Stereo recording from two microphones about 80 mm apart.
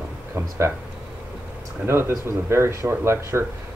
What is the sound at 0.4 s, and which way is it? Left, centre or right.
Speech, right.